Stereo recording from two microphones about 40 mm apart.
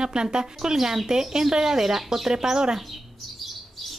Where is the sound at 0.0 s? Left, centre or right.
Centre.